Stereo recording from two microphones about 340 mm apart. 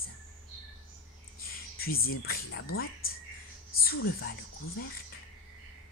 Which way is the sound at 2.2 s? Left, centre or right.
Left.